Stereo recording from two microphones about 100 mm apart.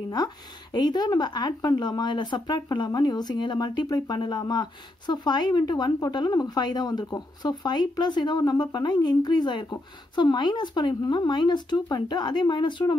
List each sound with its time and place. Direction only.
0.1 s speech: 45° left (ahead or behind)